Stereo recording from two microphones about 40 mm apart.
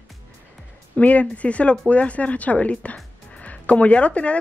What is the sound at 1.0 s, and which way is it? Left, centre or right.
A woman's voice, left.